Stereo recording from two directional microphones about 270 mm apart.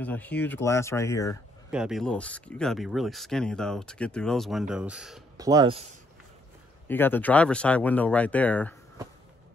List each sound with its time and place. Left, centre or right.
0.0 s speech: centre
1.7 s speech: centre
5.4 s speech: centre
6.9 s speech: centre